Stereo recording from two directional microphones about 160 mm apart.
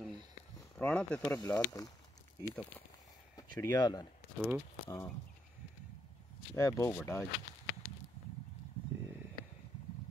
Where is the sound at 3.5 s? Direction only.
25° left (ahead or behind).